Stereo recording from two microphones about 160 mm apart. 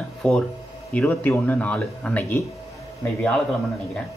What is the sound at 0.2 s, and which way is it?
Speech, 5° left (ahead or behind).